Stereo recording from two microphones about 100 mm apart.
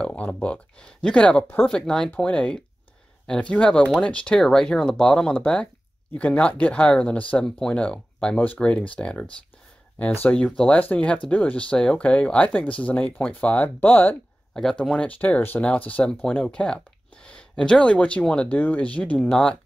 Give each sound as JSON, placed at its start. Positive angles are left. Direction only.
{"t": 0.0, "sound": "speech", "side_deg": 15}
{"t": 14.5, "sound": "speech", "side_deg": 5}